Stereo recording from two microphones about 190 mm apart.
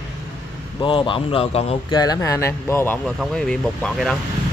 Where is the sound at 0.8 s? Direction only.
25° left (ahead or behind).